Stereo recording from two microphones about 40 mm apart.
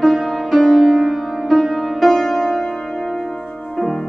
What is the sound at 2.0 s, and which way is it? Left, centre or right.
Music, centre.